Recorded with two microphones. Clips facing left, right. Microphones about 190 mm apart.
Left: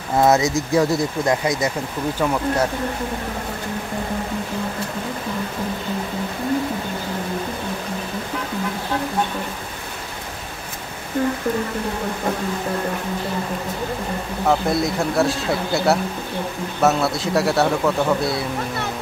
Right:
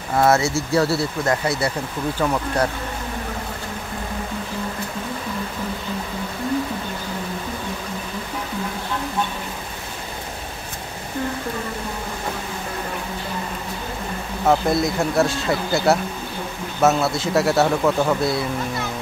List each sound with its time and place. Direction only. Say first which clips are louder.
0.2 s speech: left 1 dB; 15° left (ahead or behind)
14.4 s speech: right 1 dB; centre (ahead or behind)